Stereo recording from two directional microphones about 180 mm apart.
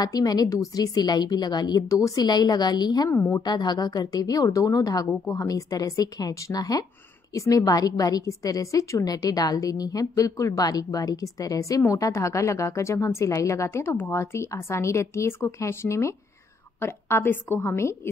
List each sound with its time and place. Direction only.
0.0 s a woman's voice: 20° left (ahead or behind)
3.2 s a woman's voice: 10° left (ahead or behind)
3.4 s a woman's voice: 25° left (ahead or behind)